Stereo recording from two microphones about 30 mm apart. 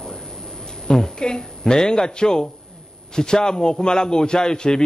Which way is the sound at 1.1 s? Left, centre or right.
Left.